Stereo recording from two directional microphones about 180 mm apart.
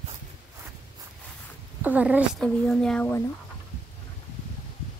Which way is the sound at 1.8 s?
10° right (ahead or behind).